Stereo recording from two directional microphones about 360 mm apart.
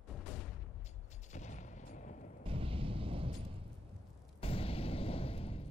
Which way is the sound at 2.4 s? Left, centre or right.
Centre.